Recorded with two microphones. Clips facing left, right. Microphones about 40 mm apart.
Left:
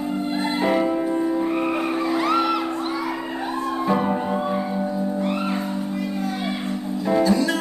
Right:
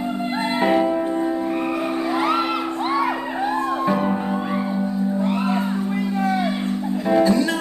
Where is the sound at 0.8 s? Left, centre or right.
Centre.